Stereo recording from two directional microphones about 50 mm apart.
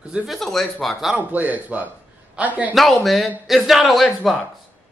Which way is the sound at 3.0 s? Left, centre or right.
Centre.